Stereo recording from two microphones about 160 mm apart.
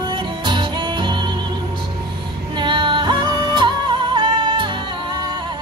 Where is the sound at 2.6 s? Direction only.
30° right (ahead or behind).